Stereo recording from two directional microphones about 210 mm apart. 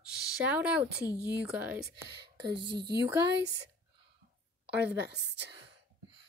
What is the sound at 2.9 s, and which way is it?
Speech, 15° right (ahead or behind).